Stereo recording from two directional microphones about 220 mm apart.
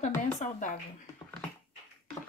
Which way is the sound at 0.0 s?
35° left (ahead or behind).